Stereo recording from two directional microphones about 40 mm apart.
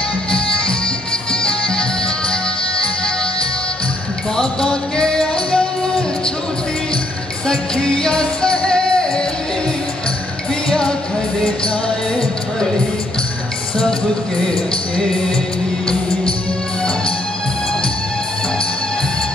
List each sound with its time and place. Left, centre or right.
1.3 s music: left
4.9 s music: left
7.4 s music: left
10.7 s music: left